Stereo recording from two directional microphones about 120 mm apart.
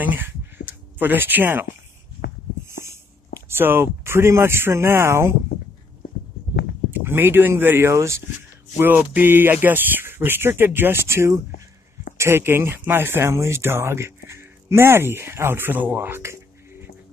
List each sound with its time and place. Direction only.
0.0 s speech: 15° right (ahead or behind)
2.8 s speech: 20° right (ahead or behind)
6.9 s speech: 20° right (ahead or behind)